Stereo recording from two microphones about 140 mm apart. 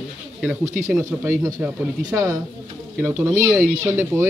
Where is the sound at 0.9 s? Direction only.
20° right (ahead or behind).